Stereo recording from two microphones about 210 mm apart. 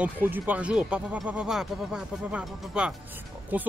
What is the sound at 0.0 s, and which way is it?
Speech, 10° right (ahead or behind).